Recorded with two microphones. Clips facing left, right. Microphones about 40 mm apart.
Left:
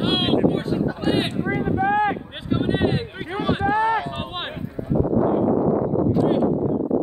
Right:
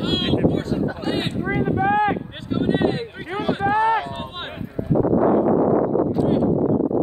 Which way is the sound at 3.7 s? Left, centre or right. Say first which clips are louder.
Right 2 dB; right.